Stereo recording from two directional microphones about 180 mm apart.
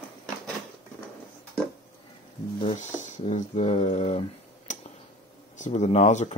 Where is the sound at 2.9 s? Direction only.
40° left (ahead or behind).